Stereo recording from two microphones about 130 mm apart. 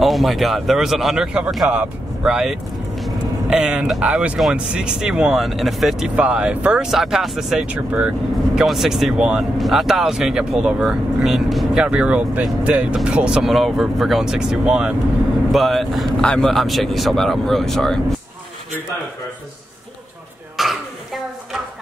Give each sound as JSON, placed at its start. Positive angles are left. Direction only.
{"t": 0.0, "sound": "speech", "side_deg": 0}
{"t": 20.5, "sound": "throat clearing", "side_deg": 0}